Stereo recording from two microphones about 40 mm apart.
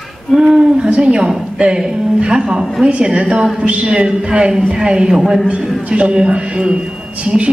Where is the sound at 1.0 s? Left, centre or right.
Right.